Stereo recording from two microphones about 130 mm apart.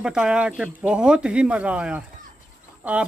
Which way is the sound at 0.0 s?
5° right (ahead or behind).